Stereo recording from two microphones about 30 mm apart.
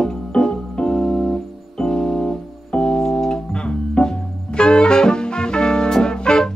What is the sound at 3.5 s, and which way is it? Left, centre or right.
Saxophone, left.